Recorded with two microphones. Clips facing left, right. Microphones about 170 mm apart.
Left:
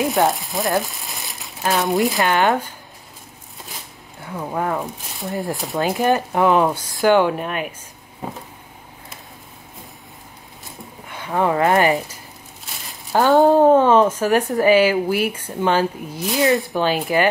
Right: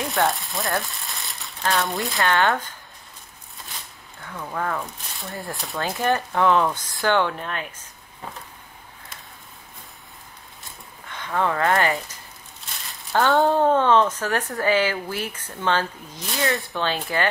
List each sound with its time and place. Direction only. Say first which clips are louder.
0.0 s frying: left 5 dB; 20° left (ahead or behind)
0.3 s speech: left 5 dB; centre (ahead or behind)
1.2 s crumpling: left 2 dB; centre (ahead or behind)
1.6 s speech: left 6 dB; 20° left (ahead or behind)
4.2 s speech: left 5 dB; 25° left (ahead or behind)
5.4 s speech: left 7 dB; centre (ahead or behind)
5.8 s speech: left 5 dB; 20° left (ahead or behind)
11.1 s speech: left 4 dB; 10° left (ahead or behind)
12.7 s crumpling: left 2 dB; centre (ahead or behind)
13.1 s speech: left 5 dB; 20° left (ahead or behind)